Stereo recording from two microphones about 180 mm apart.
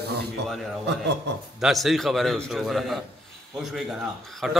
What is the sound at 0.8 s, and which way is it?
Speech, 70° right (ahead or behind).